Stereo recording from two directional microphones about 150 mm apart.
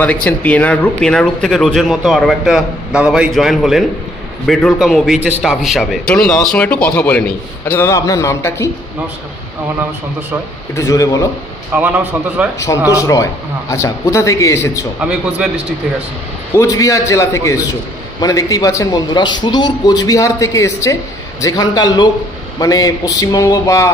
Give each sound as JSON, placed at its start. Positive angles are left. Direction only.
{"t": 0.0, "sound": "speech", "side_deg": 10}
{"t": 10.7, "sound": "a man's voice", "side_deg": 20}
{"t": 11.7, "sound": "a man's voice", "side_deg": -10}
{"t": 12.9, "sound": "a man's voice", "side_deg": 20}
{"t": 15.0, "sound": "a man's voice", "side_deg": -5}
{"t": 16.5, "sound": "a man's voice", "side_deg": 20}